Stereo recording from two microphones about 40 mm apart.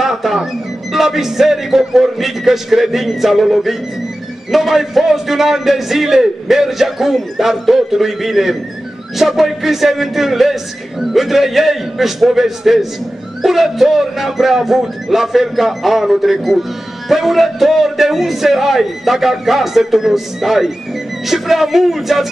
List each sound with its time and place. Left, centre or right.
0.0 s music: centre
0.9 s a man's voice: centre